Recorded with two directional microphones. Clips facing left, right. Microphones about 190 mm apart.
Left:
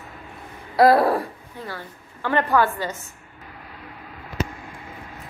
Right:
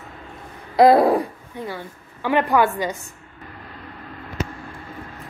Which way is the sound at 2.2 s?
15° right (ahead or behind).